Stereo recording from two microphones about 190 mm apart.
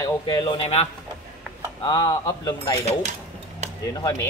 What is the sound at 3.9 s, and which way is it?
Speech, 25° left (ahead or behind).